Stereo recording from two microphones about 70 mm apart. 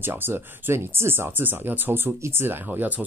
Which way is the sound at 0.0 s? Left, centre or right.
Right.